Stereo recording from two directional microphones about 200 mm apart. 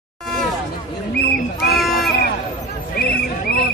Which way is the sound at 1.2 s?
50° left (ahead or behind).